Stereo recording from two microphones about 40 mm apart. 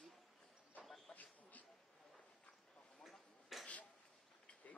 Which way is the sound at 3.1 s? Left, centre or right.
Centre.